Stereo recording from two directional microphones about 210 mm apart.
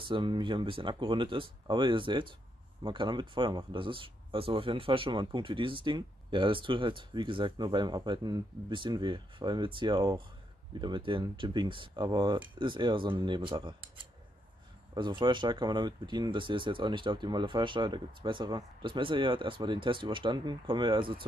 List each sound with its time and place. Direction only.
0.0 s speech: 25° right (ahead or behind)
15.0 s speech: 20° right (ahead or behind)